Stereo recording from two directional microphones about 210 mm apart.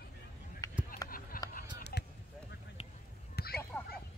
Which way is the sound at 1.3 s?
40° left (ahead or behind).